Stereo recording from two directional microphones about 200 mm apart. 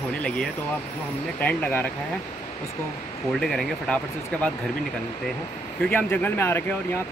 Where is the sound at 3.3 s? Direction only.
5° left (ahead or behind).